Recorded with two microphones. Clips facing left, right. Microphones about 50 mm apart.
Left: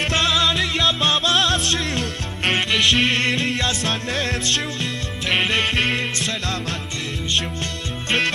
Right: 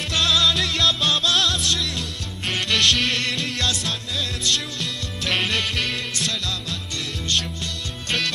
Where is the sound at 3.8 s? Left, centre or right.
Left.